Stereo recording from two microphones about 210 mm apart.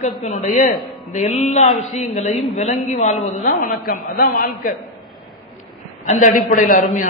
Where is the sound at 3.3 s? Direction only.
45° left (ahead or behind).